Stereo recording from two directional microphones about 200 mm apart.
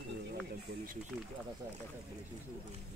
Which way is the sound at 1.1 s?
Centre (ahead or behind).